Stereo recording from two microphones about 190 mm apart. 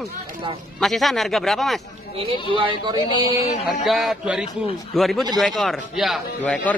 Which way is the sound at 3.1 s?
25° left (ahead or behind).